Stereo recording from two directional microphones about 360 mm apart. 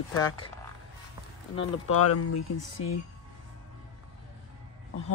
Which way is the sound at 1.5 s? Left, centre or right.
Left.